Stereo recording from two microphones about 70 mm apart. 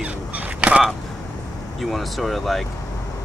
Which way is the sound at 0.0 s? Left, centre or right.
Right.